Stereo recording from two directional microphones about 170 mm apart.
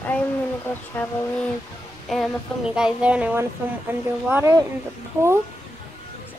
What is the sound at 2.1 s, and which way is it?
Speech, centre (ahead or behind).